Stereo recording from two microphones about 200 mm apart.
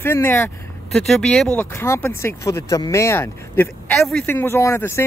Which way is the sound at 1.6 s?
10° left (ahead or behind).